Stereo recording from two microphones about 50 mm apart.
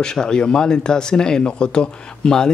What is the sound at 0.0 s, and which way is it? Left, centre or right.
Speech, centre.